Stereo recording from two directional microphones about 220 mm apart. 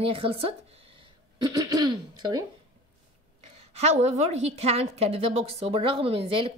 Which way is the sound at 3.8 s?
30° right (ahead or behind).